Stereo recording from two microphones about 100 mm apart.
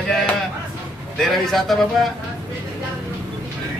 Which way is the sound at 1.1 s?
5° left (ahead or behind).